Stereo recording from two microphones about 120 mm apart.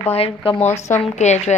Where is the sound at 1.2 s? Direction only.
70° left (ahead or behind).